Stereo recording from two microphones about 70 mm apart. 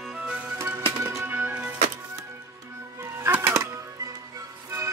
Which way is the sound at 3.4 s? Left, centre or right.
Right.